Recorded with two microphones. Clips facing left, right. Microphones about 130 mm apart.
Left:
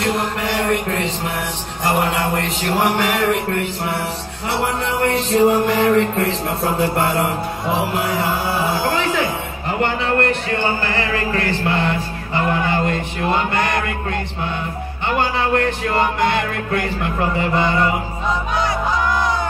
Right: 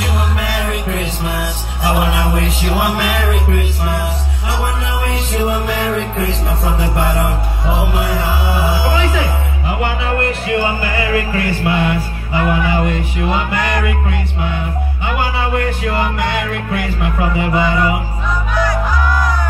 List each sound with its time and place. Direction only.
0.0 s music: 5° right (ahead or behind)
5.0 s music: centre (ahead or behind)
7.9 s speech: centre (ahead or behind)
9.7 s music: 5° right (ahead or behind)
15.1 s speech: 5° right (ahead or behind)
16.7 s music: 5° right (ahead or behind)
18.5 s music: 25° left (ahead or behind)